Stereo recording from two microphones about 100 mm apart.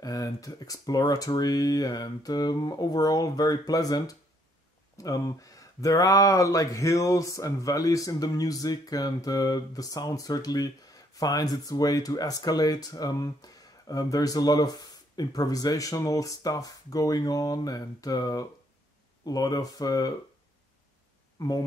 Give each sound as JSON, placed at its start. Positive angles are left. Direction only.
{"t": 0.0, "sound": "speech", "side_deg": 35}
{"t": 21.4, "sound": "speech", "side_deg": 40}